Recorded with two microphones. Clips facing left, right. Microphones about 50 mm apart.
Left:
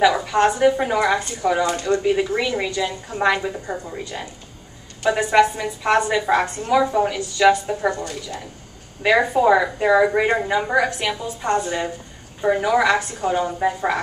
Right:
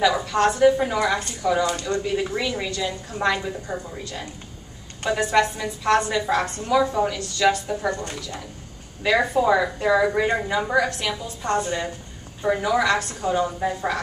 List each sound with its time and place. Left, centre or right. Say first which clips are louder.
0.0 s a woman's voice: left 3 dB; centre
0.7 s a woman's voice: left 3 dB; centre
7.6 s speech: left 3 dB; left
8.0 s a woman's voice: left 3 dB; right
9.0 s a woman's voice: left 3 dB; centre